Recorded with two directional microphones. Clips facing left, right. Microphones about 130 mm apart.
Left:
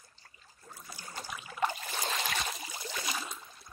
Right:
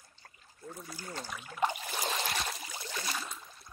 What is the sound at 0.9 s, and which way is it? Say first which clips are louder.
Speech: even; 5° left (ahead or behind).